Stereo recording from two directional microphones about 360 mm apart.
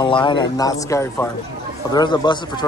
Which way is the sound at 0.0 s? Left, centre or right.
Centre.